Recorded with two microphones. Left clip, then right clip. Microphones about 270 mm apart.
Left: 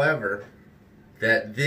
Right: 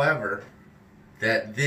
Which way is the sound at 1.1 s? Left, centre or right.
Centre.